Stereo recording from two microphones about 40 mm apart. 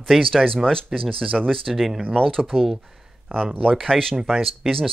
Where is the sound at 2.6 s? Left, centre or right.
Centre.